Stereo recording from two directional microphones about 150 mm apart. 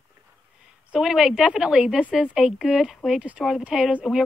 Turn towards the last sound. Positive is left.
turn(degrees=-5)  # may be behind; listen again after turning